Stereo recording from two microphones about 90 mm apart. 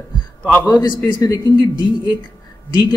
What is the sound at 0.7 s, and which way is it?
Speech, 45° left (ahead or behind).